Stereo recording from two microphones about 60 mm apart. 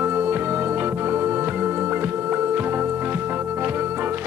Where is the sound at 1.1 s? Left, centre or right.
Right.